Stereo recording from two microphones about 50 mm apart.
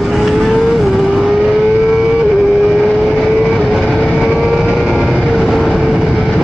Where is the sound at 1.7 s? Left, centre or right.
Centre.